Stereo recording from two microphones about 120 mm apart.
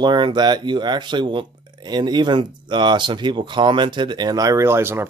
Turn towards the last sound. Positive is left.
turn(degrees=-20)  # may be behind; listen again after turning